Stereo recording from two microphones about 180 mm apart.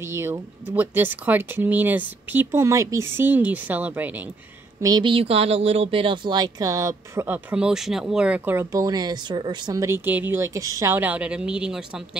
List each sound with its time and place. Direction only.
0.0 s speech: 15° right (ahead or behind)
4.8 s speech: 25° right (ahead or behind); by 12.2 s 5° right (ahead or behind)